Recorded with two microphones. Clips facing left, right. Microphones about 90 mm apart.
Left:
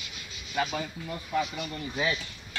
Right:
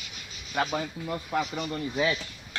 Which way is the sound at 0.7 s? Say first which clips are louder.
Right 3 dB; 40° right (ahead or behind).